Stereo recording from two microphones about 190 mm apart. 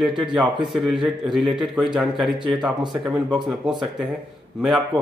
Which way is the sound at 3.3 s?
5° right (ahead or behind).